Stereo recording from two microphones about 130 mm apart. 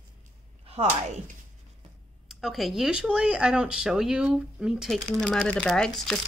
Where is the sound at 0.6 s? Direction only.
55° right (ahead or behind).